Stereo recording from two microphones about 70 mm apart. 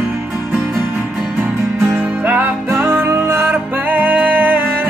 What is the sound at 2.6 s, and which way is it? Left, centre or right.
Music, right.